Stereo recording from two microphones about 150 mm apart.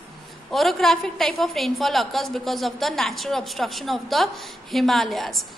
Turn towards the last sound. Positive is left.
turn(degrees=0)  # may be behind; listen again after turning